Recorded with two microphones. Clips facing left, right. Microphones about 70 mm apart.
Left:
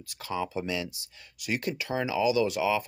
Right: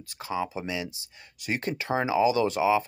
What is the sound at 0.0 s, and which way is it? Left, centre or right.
Speech, right.